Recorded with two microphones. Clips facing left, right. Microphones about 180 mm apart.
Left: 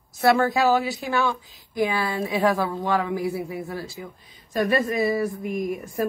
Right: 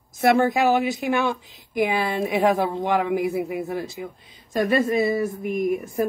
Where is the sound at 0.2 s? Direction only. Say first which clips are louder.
Right 1 dB; 20° right (ahead or behind).